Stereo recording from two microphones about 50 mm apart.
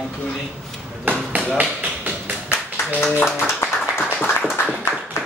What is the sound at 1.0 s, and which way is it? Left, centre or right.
Hammer, right.